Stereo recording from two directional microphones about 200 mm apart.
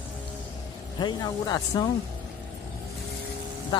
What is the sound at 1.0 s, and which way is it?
Speech, 20° left (ahead or behind).